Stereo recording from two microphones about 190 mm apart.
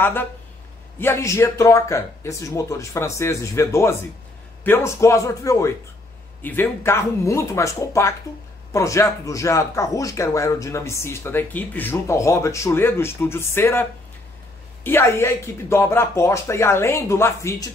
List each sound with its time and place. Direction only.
0.0 s speech: 10° left (ahead or behind)